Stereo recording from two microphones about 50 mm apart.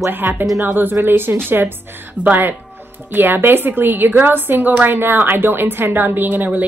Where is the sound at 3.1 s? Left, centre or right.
Right.